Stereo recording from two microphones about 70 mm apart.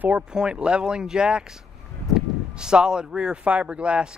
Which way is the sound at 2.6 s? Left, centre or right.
Centre.